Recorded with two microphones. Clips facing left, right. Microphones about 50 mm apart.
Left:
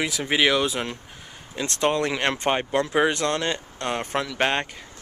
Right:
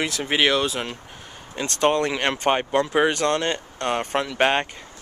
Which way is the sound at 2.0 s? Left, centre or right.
Centre.